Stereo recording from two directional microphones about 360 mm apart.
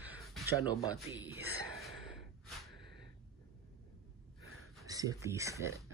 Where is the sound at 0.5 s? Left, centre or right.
Centre.